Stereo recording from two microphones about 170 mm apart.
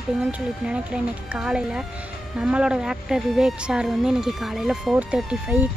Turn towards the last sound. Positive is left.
turn(degrees=-10)  # may be behind; listen again after turning